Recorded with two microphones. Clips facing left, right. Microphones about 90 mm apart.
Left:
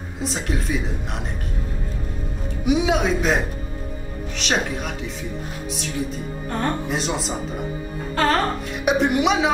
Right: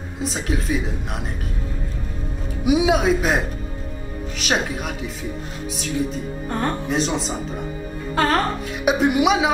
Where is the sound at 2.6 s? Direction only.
5° right (ahead or behind).